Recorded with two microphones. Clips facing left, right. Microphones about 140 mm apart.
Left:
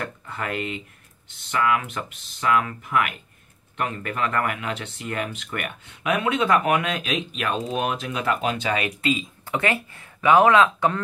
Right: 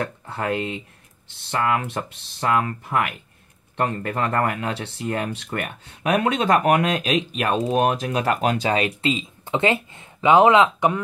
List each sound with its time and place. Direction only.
0.3 s speech: 30° right (ahead or behind)
8.6 s speech: 30° right (ahead or behind)